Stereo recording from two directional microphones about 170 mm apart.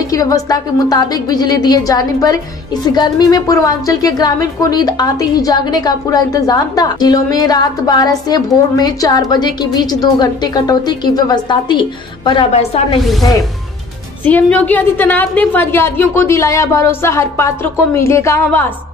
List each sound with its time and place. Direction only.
0.0 s a woman's voice: 20° left (ahead or behind)
12.5 s speech: 40° left (ahead or behind)
14.2 s a woman's voice: 10° left (ahead or behind)